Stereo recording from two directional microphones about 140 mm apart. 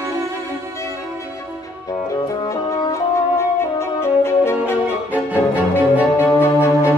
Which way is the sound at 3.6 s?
20° left (ahead or behind).